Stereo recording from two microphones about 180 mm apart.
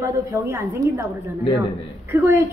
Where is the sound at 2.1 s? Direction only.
15° right (ahead or behind).